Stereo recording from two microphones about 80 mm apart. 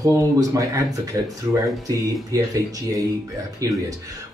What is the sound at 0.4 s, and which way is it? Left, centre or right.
Speech, right.